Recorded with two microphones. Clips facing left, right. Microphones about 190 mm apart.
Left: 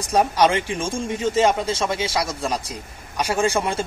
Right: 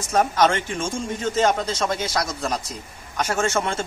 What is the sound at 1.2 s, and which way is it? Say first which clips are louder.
A man's voice: left 2 dB; 10° left (ahead or behind).